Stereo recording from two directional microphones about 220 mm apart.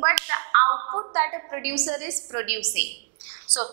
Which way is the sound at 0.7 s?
25° right (ahead or behind).